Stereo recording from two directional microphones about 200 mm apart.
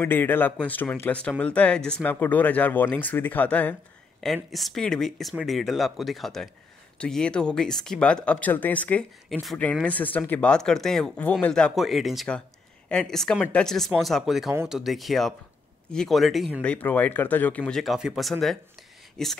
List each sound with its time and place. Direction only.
0.0 s speech: 10° left (ahead or behind)